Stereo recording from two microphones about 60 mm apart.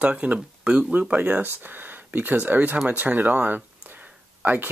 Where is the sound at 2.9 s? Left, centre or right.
Right.